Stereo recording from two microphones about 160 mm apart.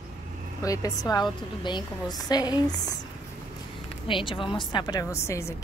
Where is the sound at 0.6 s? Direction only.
20° left (ahead or behind).